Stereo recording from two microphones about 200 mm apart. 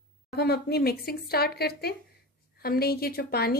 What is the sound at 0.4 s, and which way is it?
A woman's voice, 55° left (ahead or behind).